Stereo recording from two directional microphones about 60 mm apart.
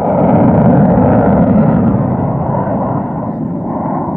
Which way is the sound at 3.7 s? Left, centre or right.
Centre.